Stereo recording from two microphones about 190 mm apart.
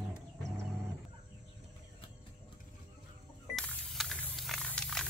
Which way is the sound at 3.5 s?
Centre (ahead or behind).